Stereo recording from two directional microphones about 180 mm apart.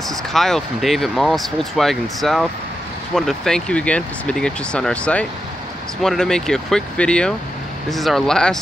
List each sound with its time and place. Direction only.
0.1 s speech: centre (ahead or behind)